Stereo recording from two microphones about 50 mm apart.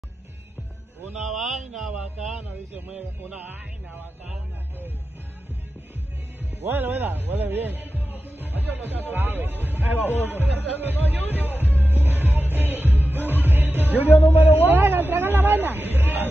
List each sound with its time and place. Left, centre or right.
1.2 s mantra: centre
2.9 s a man's voice: centre
3.3 s speech: right
6.6 s speech: right
11.8 s music: right
14.1 s a man's voice: left
14.7 s speech: right